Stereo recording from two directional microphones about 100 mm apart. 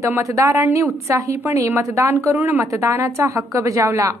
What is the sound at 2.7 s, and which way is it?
A woman's voice, 30° right (ahead or behind).